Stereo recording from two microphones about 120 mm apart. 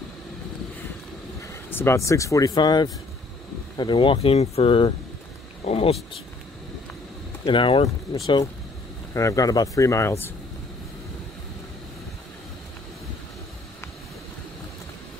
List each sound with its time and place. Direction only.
1.5 s speech: 20° left (ahead or behind); by 5.9 s 55° left (ahead or behind)
7.4 s speech: 45° left (ahead or behind)
9.1 s speech: 25° left (ahead or behind)